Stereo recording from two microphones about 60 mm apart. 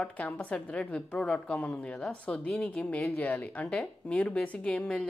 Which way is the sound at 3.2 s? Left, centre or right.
Left.